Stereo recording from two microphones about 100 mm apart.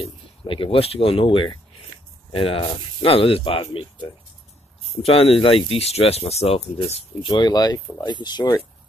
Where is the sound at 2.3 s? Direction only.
70° left (ahead or behind).